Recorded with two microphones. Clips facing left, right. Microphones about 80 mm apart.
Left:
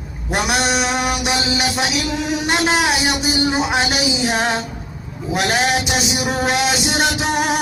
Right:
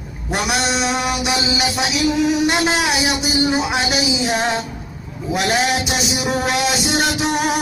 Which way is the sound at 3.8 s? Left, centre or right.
Left.